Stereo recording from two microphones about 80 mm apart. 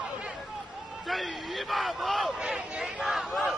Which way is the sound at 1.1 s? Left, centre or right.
Centre.